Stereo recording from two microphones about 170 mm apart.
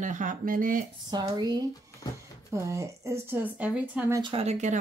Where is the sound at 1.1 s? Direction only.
25° right (ahead or behind); by 4.0 s 10° right (ahead or behind).